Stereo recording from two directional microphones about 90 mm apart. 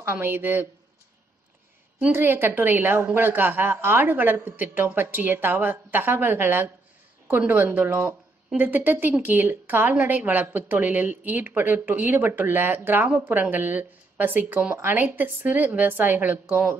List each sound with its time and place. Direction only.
0.0 s a woman's voice: 25° right (ahead or behind)
2.1 s a woman's voice: 25° right (ahead or behind)